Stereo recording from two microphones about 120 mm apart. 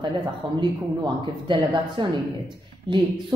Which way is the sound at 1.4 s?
40° right (ahead or behind).